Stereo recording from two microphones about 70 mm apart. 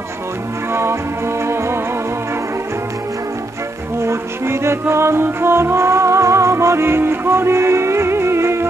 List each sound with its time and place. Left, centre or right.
0.7 s music: right
4.0 s music: right